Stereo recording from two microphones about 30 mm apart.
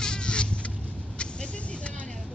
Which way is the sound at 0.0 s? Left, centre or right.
Left.